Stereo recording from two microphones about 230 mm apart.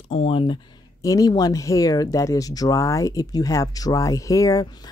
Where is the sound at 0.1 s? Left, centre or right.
Left.